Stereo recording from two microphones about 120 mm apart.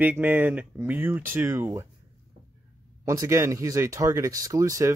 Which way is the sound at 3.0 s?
25° right (ahead or behind).